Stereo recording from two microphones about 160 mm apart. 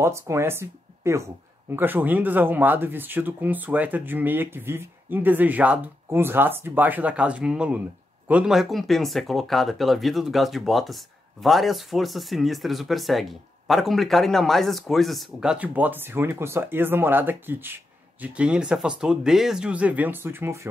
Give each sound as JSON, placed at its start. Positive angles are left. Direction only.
{"t": 0.0, "sound": "speech", "side_deg": -15}